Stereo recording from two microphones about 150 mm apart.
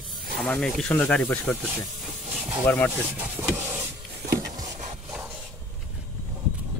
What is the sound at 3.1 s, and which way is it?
Vehicle, 15° right (ahead or behind).